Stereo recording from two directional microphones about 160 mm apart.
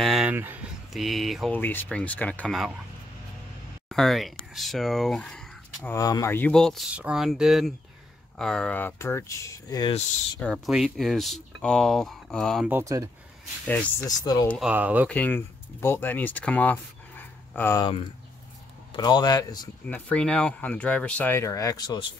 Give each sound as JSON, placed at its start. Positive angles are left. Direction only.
{"t": 0.0, "sound": "a sound", "side_deg": -5}
{"t": 0.9, "sound": "speech", "side_deg": 0}
{"t": 1.5, "sound": "speech", "side_deg": 10}
{"t": 3.9, "sound": "speech", "side_deg": 0}
{"t": 5.8, "sound": "speech", "side_deg": 20}
{"t": 6.5, "sound": "speech", "side_deg": 5}
{"t": 10.4, "sound": "speech", "side_deg": 0}
{"t": 12.6, "sound": "speech", "side_deg": -15}
{"t": 14.0, "sound": "speech", "side_deg": 25}
{"t": 14.6, "sound": "speech", "side_deg": -10}
{"t": 15.0, "sound": "speech", "side_deg": 10}
{"t": 17.7, "sound": "speech", "side_deg": 30}
{"t": 19.9, "sound": "speech", "side_deg": 10}